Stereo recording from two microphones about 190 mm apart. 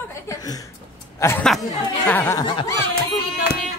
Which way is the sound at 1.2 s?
10° left (ahead or behind).